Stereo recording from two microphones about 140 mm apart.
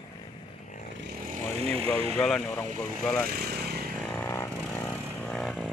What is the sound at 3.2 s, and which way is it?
Motorcycle, 90° right.